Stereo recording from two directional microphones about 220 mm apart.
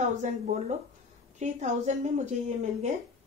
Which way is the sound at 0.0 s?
35° right (ahead or behind).